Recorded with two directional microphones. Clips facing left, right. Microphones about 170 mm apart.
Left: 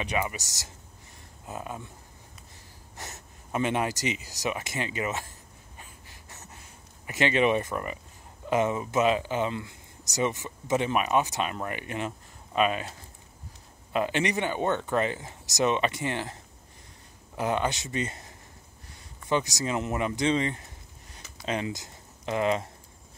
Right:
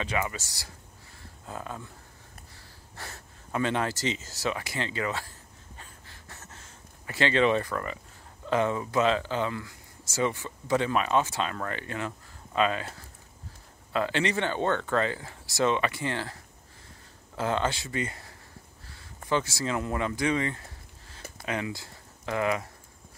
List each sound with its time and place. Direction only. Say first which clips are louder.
0.0 s speech: left 1 dB; 20° left (ahead or behind)
1.2 s a sound: left 1 dB; 15° left (ahead or behind)
3.0 s speech: left 1 dB; 20° left (ahead or behind)
5.8 s a sound: left 1 dB; 15° left (ahead or behind)
8.5 s speech: left 1 dB; 20° left (ahead or behind)
17.4 s speech: even; 15° left (ahead or behind)